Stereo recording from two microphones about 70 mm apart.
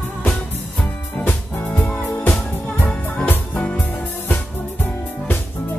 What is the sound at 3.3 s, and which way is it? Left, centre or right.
Music, left.